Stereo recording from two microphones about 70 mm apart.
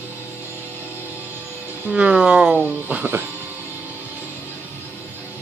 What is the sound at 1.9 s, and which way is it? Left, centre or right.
Speech, centre.